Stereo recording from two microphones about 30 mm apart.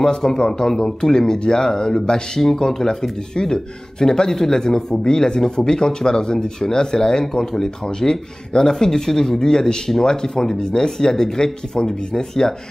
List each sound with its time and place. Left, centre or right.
0.0 s speech: centre